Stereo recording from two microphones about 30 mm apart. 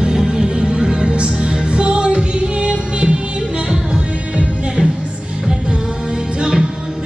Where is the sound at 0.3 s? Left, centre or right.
Right.